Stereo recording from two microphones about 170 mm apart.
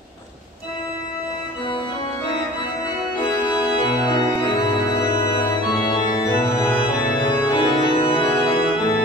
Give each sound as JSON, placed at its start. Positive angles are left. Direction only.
{"t": 3.2, "sound": "organ", "side_deg": 25}